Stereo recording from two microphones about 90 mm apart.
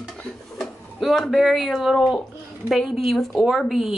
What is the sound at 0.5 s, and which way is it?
Speech, centre (ahead or behind).